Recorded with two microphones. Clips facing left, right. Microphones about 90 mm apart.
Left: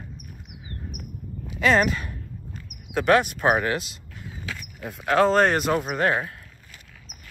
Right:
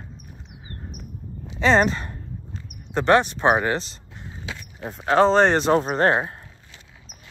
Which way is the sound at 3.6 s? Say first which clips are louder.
Right 2 dB; 25° right (ahead or behind).